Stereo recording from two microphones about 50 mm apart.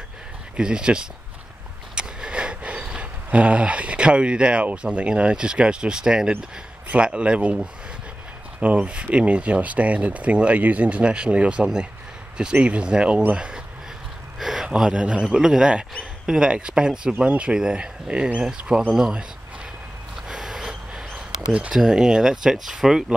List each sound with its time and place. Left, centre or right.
0.6 s speech: centre
8.5 s speech: right
14.4 s a sound: centre
14.7 s speech: centre
20.2 s a sound: centre
21.5 s speech: right
21.7 s speech: centre